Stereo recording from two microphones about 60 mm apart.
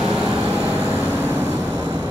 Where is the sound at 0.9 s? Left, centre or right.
Right.